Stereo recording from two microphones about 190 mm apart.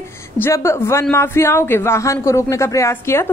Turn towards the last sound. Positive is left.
turn(degrees=15)  # may be behind; listen again after turning